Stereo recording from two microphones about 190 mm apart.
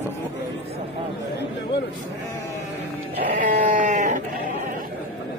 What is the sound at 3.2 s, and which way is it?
Sheep, 50° right (ahead or behind).